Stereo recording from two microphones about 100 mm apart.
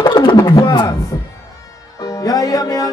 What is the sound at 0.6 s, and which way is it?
Speech, 45° left (ahead or behind).